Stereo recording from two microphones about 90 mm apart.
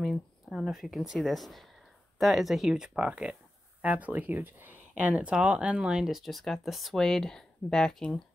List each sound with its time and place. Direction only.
0.5 s speech: 5° right (ahead or behind)